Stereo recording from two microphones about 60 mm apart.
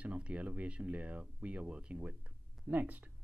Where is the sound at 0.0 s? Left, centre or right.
Right.